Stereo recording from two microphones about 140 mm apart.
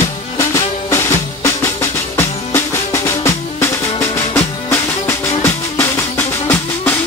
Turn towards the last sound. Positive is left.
turn(degrees=15)  # may be behind; listen again after turning